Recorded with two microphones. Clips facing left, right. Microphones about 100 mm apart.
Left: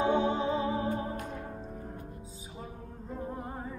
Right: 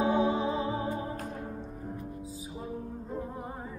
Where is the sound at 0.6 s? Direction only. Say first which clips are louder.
Left 1 dB; 35° right (ahead or behind).